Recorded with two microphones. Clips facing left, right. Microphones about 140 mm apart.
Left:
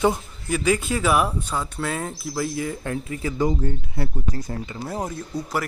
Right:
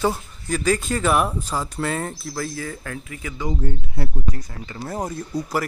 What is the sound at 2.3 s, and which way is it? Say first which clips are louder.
Speech: left 5 dB; 20° left (ahead or behind).